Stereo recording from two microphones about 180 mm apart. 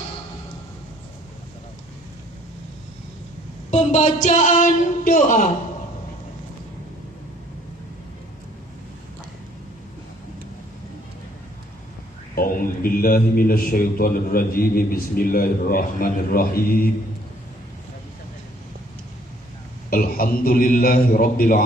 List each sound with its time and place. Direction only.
3.7 s a man's voice: 40° left (ahead or behind)
12.4 s a man's voice: 55° left (ahead or behind)
19.9 s a man's voice: 55° left (ahead or behind)